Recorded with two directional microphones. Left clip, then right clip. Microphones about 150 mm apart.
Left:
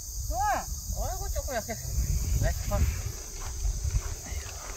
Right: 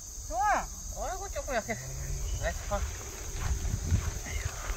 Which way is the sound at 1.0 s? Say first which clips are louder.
Right 1 dB; 15° left (ahead or behind).